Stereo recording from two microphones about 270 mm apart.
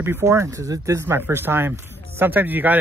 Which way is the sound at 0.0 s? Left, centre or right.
Centre.